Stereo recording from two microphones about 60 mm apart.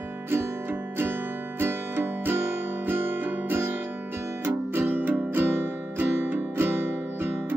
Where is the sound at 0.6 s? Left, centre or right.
Right.